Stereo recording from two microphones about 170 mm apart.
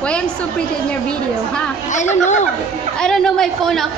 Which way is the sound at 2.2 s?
45° left (ahead or behind).